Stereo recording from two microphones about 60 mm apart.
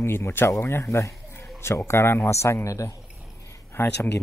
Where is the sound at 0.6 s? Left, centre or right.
Left.